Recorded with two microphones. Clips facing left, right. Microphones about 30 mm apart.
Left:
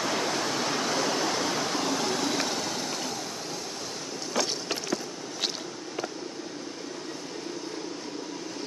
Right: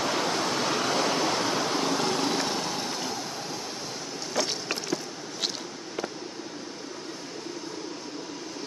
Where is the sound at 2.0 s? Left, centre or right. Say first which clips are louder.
Right 1 dB; right.